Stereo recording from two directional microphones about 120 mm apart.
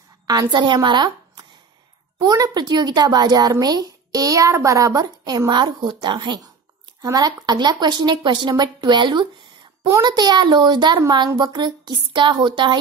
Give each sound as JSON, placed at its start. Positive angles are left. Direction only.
{"t": 0.3, "sound": "a woman's voice", "side_deg": -35}